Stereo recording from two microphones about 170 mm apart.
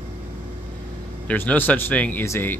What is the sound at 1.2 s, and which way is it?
Speech, 10° left (ahead or behind).